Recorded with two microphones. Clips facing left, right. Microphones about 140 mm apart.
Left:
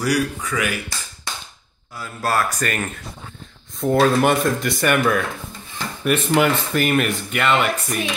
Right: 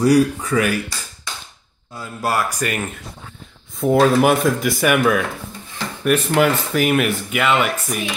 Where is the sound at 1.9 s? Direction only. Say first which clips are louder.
Even; 15° right (ahead or behind).